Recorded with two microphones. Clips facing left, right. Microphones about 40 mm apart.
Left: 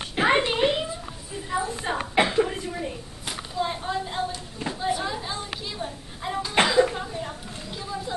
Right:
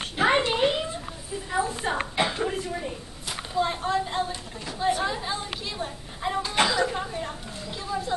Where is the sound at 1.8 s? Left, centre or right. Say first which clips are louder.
Right 1 dB; centre.